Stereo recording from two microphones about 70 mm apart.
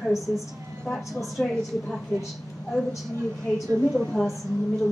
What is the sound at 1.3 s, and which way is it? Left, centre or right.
Speech, centre.